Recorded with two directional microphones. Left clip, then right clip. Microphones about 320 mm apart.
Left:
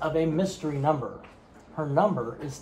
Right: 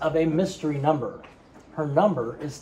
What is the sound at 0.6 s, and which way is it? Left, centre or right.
Speech, centre.